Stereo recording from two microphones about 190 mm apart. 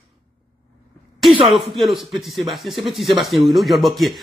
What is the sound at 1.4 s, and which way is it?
Speech, centre (ahead or behind).